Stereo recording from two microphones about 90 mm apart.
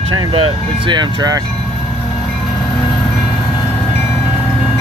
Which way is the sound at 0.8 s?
50° right (ahead or behind).